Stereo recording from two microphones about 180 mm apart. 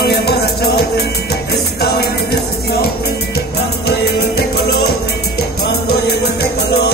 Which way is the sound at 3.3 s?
60° left (ahead or behind).